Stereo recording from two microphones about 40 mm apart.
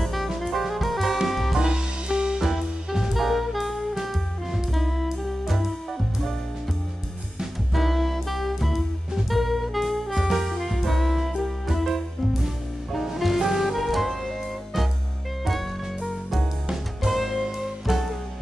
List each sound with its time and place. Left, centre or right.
0.0 s music: centre
1.6 s music: right
2.4 s music: centre
7.7 s music: centre
17.0 s music: centre